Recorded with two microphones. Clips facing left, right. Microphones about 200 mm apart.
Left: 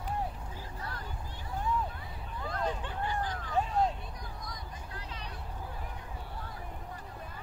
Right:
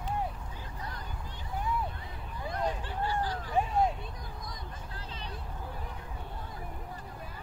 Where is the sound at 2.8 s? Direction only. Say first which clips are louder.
Right 2 dB; 20° left (ahead or behind).